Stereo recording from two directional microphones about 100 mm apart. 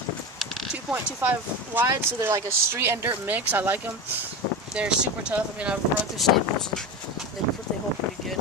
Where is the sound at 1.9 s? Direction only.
35° right (ahead or behind); by 5.8 s 10° right (ahead or behind).